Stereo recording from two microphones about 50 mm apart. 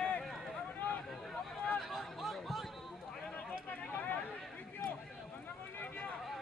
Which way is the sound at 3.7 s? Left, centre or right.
Left.